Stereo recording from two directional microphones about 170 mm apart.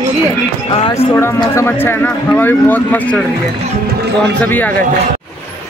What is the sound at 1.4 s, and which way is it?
Speech, 15° left (ahead or behind).